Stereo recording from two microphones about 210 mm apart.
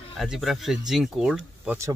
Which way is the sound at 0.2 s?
Centre (ahead or behind).